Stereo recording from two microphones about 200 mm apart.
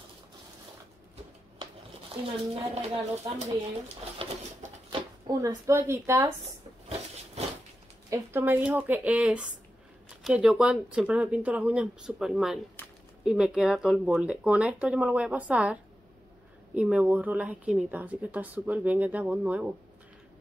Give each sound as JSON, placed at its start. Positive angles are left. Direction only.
{"t": 2.2, "sound": "a woman's voice", "side_deg": -30}
{"t": 4.2, "sound": "a sound", "side_deg": -30}
{"t": 5.2, "sound": "speech", "side_deg": -15}
{"t": 8.1, "sound": "speech", "side_deg": -10}